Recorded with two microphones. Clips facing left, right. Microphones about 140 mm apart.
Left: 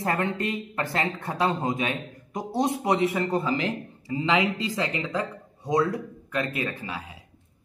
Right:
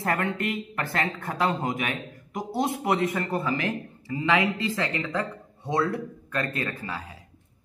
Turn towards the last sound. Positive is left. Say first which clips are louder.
# even
turn(degrees=15)  # may be behind; listen again after turning